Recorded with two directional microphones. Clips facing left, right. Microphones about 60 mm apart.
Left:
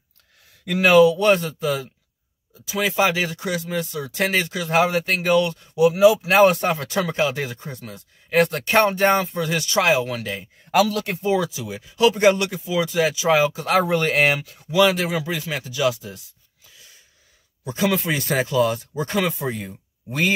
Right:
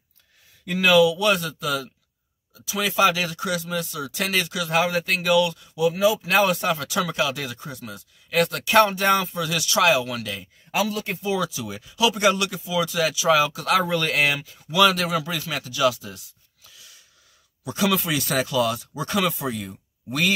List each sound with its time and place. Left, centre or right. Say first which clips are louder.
0.7 s speech: left 3 dB; left
5.8 s speech: left 6 dB; left; by 11.9 s centre
12.0 s speech: left 4 dB; left
14.7 s speech: left 1 dB; left
17.6 s speech: left 1 dB; left